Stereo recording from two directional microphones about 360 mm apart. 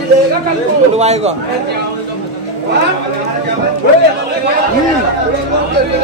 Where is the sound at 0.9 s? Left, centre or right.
Centre.